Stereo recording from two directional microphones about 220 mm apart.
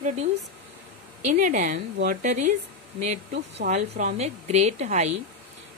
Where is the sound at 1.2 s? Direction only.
35° right (ahead or behind).